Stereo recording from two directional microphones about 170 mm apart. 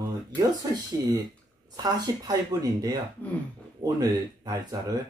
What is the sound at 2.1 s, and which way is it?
Speech, 20° right (ahead or behind).